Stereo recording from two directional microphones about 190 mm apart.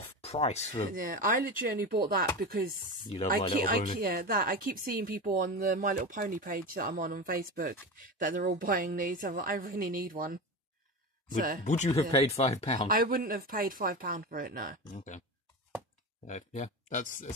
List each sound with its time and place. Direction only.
0.0 s speech: 30° left (ahead or behind)
0.9 s speech: 45° right (ahead or behind)
3.0 s speech: 30° left (ahead or behind)
3.6 s speech: 50° right (ahead or behind)
11.6 s speech: 40° left (ahead or behind)
12.8 s speech: 50° right (ahead or behind)
15.0 s speech: 40° left (ahead or behind)
16.3 s speech: 40° left (ahead or behind)